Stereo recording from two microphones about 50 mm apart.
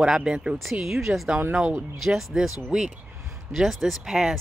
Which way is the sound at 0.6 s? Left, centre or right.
Centre.